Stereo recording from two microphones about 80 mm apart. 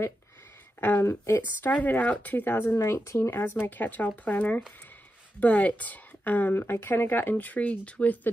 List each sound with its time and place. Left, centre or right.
0.7 s a woman's voice: left
2.8 s a woman's voice: left; by 8.3 s centre